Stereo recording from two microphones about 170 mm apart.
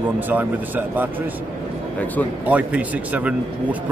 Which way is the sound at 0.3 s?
10° right (ahead or behind).